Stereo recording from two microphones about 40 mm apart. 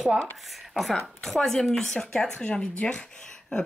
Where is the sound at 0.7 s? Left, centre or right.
Centre.